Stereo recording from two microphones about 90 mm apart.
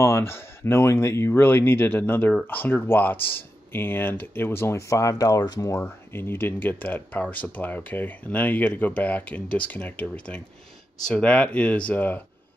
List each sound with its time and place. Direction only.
0.0 s speech: 30° left (ahead or behind)
5.7 s speech: 25° left (ahead or behind)